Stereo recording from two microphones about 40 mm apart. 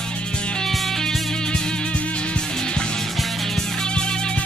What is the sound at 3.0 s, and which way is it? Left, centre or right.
Music, centre.